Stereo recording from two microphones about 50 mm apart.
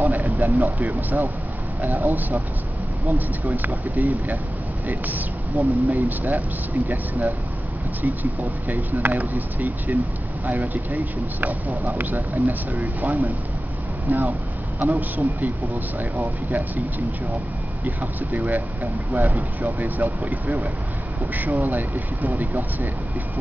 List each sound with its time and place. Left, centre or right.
0.0 s a sound: right
0.7 s speech: right
17.8 s speech: right